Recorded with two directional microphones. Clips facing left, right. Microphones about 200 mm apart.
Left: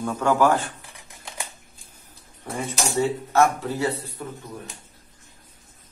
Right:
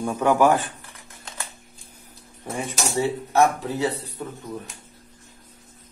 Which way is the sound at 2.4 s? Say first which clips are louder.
Even; 15° right (ahead or behind).